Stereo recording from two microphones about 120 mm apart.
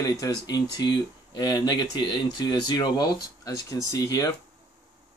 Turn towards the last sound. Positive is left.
turn(degrees=30)  # may be behind; listen again after turning